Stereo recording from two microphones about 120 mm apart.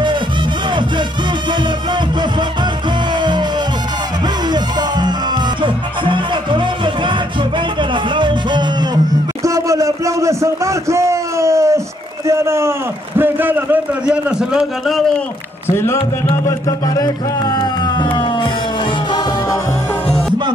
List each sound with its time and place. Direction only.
3.2 s music: 40° right (ahead or behind)
4.5 s music: 35° right (ahead or behind)
9.4 s a sound: 25° right (ahead or behind)
12.3 s a man's voice: 20° right (ahead or behind); by 15.1 s centre (ahead or behind)
15.7 s music: 20° left (ahead or behind); by 18.5 s 40° left (ahead or behind)
20.1 s music: 10° left (ahead or behind)